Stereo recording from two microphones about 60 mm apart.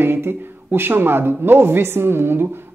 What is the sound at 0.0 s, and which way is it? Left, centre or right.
Speech, right.